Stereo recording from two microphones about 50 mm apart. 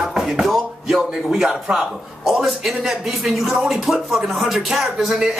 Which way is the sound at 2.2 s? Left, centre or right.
Centre.